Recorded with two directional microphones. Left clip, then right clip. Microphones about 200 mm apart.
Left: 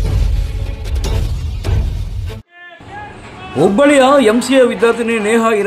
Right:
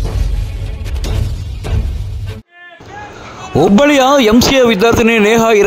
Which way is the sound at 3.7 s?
45° right (ahead or behind).